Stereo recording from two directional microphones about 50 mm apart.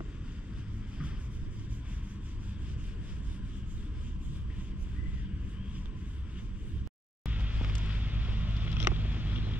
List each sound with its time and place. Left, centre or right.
7.2 s vehicle: right